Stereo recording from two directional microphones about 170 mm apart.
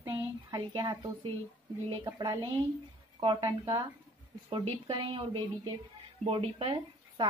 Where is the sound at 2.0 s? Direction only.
20° right (ahead or behind).